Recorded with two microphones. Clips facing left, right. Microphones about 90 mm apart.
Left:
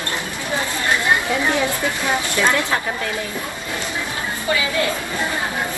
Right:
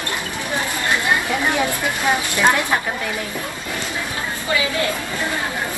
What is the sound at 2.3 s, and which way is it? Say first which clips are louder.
Speech: right 1 dB; 20° right (ahead or behind).